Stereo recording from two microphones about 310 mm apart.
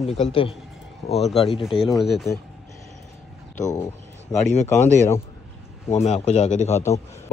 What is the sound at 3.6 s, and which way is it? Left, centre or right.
Speech, centre.